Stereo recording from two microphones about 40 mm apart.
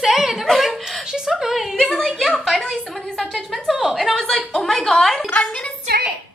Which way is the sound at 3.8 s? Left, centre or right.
Centre.